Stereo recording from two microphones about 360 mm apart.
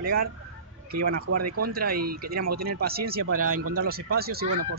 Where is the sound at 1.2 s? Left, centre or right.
Right.